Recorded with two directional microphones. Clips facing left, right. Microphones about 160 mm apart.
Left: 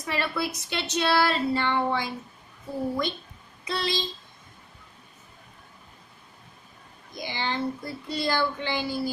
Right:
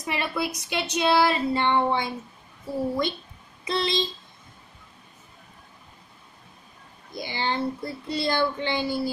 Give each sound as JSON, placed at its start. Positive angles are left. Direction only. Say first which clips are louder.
{"t": 0.0, "sound": "speech", "louder": "right 1 dB", "side_deg": -15}
{"t": 3.6, "sound": "speech", "louder": "right 3 dB", "side_deg": -20}
{"t": 7.2, "sound": "speech", "louder": "right 2 dB", "side_deg": -30}